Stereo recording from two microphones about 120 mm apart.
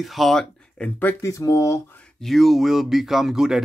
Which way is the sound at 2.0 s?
5° left (ahead or behind).